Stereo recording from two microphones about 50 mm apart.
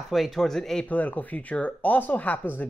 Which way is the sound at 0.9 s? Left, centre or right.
Left.